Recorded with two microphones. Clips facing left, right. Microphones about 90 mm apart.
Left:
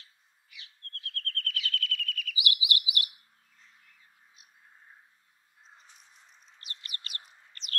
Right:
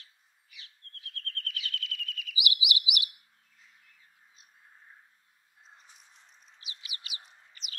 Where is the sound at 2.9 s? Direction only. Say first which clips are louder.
Left 1 dB; 75° right (ahead or behind).